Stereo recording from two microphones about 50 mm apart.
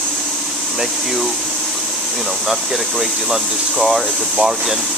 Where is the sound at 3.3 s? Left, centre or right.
Centre.